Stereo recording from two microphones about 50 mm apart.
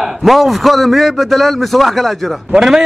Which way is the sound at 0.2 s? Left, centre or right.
Centre.